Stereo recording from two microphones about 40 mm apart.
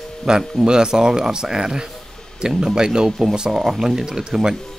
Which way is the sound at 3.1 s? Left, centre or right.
Centre.